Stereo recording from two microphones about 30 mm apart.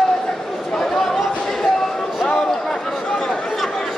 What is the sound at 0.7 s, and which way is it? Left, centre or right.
Chatter, centre.